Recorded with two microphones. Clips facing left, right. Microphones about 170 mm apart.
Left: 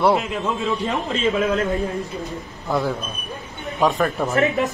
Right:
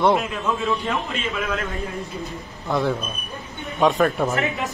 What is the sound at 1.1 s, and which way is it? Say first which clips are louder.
Speech: left 7 dB; 35° left (ahead or behind).